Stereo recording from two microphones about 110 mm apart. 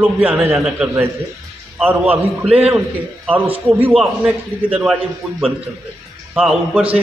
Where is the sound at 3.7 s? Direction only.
15° right (ahead or behind).